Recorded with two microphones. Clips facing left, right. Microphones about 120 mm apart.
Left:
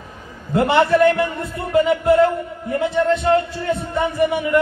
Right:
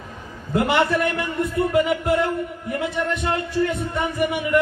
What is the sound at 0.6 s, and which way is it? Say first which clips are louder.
A man's voice: left 5 dB; 35° left (ahead or behind).